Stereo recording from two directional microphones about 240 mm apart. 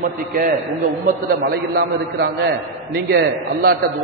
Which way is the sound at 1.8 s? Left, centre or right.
Right.